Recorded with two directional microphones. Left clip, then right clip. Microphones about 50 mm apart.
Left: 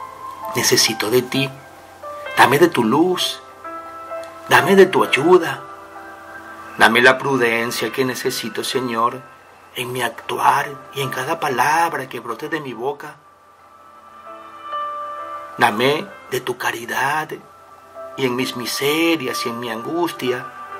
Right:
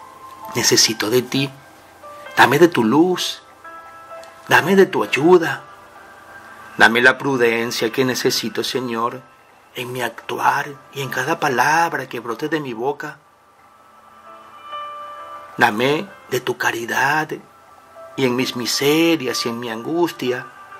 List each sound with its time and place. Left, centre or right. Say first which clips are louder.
0.5 s speech: right 1 dB; right
6.8 s speech: left 1 dB; right
14.7 s music: left 5 dB; left
15.8 s speech: left 1 dB; right